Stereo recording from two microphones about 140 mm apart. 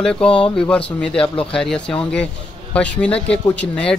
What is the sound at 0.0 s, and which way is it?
Speech, 5° left (ahead or behind).